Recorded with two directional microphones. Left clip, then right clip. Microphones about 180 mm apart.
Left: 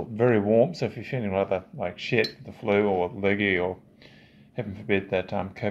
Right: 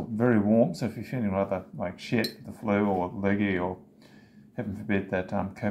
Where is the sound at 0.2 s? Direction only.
35° left (ahead or behind).